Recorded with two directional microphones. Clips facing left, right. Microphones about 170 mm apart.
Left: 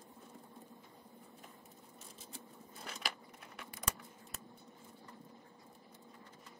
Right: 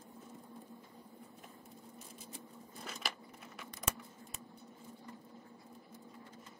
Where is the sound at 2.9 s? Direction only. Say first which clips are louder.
Even; centre (ahead or behind).